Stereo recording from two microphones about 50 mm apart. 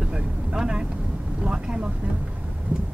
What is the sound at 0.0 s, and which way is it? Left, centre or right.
Vehicle, centre.